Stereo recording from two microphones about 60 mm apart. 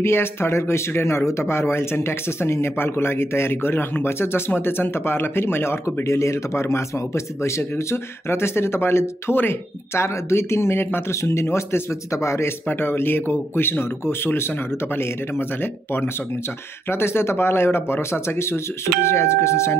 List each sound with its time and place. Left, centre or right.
0.0 s speech: left
6.0 s speech: left
12.1 s speech: left
12.6 s speech: left